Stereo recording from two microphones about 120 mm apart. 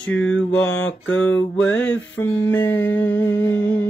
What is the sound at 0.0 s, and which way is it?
Mantra, 10° left (ahead or behind).